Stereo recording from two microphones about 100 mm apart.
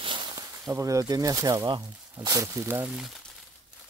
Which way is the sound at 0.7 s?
30° right (ahead or behind).